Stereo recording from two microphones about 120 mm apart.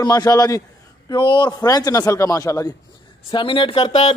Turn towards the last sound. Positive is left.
turn(degrees=50)  # may be behind; listen again after turning